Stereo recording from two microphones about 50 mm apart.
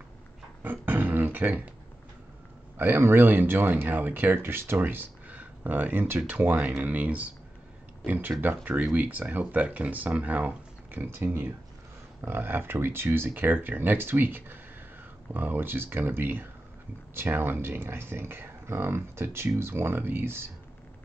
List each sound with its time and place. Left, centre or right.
0.6 s beatboxing: right
2.8 s speech: right
4.7 s a sound: right
5.4 s speech: right
11.0 s speech: right